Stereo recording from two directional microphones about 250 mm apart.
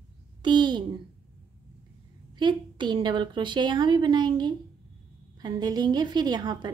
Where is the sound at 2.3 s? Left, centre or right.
Centre.